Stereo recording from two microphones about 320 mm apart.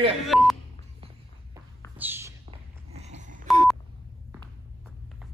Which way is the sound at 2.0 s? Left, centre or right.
Centre.